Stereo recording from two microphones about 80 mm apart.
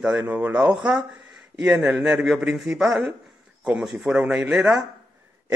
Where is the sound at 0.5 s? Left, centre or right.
Centre.